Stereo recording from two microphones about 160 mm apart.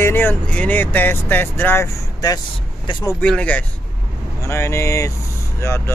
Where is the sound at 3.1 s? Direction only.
10° left (ahead or behind).